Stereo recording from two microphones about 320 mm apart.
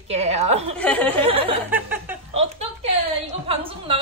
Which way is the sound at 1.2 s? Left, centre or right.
Centre.